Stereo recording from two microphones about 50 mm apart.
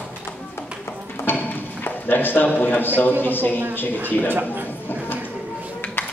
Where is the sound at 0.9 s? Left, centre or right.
Left.